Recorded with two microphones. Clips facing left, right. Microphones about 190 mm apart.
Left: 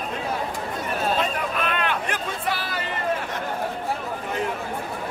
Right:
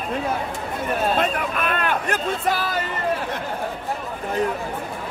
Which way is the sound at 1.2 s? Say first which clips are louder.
Right 2 dB; 50° right (ahead or behind).